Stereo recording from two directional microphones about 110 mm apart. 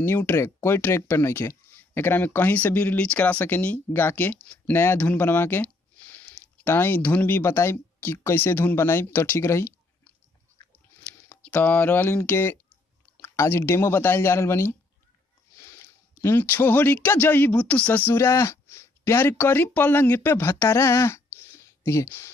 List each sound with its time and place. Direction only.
0.0 s speech: 20° left (ahead or behind)
11.2 s speech: 15° left (ahead or behind)
16.2 s speech: 20° left (ahead or behind)